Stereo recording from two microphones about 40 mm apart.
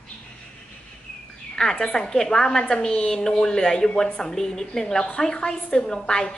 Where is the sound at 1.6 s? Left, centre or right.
Centre.